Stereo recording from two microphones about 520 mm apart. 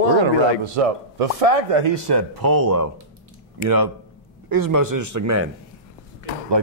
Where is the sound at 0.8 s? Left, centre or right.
Right.